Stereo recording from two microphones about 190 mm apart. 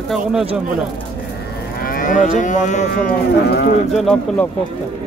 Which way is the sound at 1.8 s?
45° left (ahead or behind).